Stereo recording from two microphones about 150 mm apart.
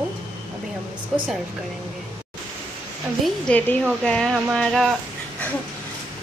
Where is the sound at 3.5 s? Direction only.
10° left (ahead or behind).